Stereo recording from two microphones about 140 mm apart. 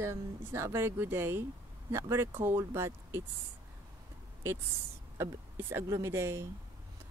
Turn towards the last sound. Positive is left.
turn(degrees=-20)  # may be behind; listen again after turning